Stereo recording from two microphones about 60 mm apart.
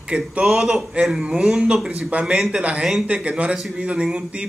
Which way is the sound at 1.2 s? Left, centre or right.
Centre.